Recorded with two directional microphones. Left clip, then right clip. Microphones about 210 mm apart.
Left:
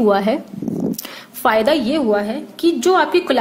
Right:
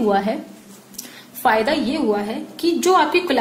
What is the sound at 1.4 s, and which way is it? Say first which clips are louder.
A woman's voice: left 3 dB; 45° left (ahead or behind).